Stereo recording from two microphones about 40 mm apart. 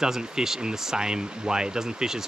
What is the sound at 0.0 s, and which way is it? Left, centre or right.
Speech, centre.